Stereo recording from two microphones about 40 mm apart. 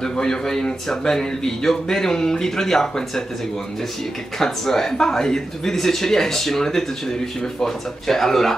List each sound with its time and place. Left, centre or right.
0.0 s speech: centre
4.4 s speech: centre